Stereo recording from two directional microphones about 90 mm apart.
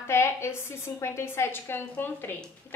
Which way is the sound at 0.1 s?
25° left (ahead or behind).